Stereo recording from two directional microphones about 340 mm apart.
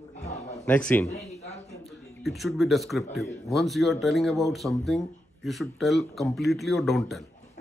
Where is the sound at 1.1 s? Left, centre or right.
Centre.